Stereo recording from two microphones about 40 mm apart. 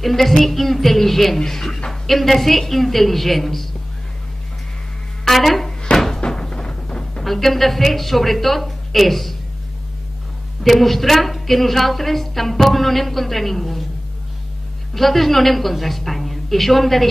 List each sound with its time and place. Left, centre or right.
0.0 s a woman's voice: centre
5.3 s a sound: centre
5.9 s cupboard open or close: centre
6.2 s music: centre
7.2 s a woman's voice: centre
10.6 s a woman's voice: centre
15.0 s a woman's voice: centre